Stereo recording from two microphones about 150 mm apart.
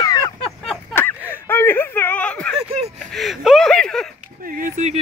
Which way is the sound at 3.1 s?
Centre (ahead or behind).